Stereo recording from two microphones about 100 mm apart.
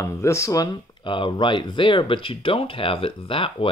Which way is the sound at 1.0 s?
55° left (ahead or behind).